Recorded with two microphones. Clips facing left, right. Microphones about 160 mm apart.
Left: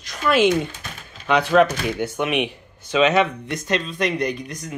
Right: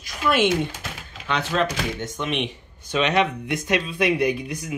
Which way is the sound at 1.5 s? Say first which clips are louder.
Left 7 dB; 55° left (ahead or behind).